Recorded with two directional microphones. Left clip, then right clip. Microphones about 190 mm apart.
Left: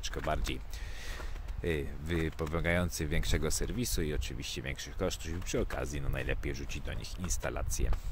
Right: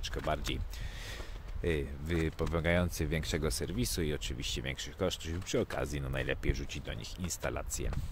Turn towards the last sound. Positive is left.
turn(degrees=-5)  # may be behind; listen again after turning